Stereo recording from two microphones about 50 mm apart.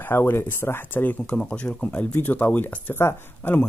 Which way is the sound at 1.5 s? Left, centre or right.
Left.